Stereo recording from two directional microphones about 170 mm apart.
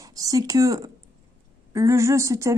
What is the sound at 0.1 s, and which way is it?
A woman's voice, 20° right (ahead or behind).